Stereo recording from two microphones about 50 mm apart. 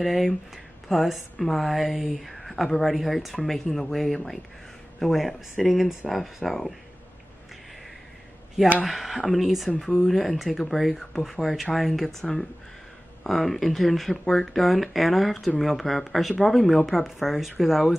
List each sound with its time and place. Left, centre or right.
0.0 s a woman's voice: centre
8.8 s a woman's voice: centre